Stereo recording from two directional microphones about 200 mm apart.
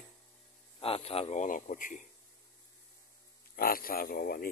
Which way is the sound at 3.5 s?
45° left (ahead or behind).